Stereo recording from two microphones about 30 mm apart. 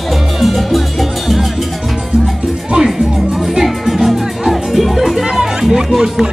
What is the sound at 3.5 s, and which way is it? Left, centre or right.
Music, centre.